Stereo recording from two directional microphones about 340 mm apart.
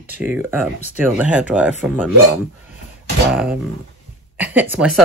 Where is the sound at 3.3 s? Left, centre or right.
Centre.